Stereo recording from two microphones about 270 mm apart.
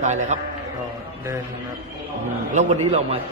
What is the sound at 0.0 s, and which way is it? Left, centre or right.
Speech, right.